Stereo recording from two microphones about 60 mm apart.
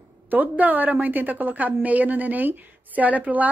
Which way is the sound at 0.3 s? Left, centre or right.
Right.